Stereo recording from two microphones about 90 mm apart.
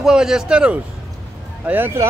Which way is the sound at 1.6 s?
20° right (ahead or behind).